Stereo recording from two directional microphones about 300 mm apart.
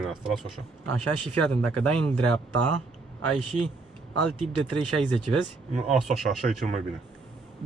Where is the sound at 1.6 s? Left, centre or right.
Right.